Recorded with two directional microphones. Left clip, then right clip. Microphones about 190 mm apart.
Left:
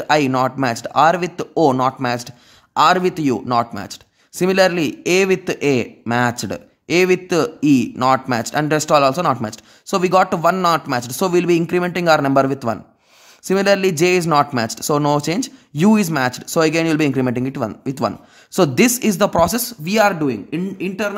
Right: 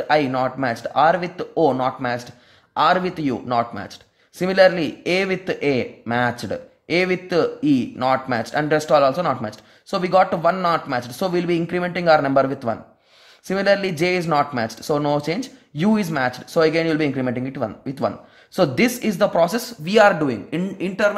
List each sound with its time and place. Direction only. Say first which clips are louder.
0.0 s speech: left 3 dB; 35° left (ahead or behind)